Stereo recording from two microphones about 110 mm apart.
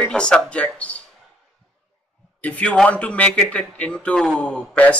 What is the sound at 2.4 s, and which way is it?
A man's voice, 10° left (ahead or behind).